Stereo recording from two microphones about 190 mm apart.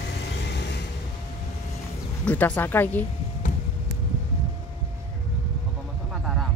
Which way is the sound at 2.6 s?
10° left (ahead or behind).